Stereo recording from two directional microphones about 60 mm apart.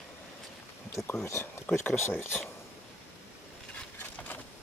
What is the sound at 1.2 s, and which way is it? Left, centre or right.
Speech, left.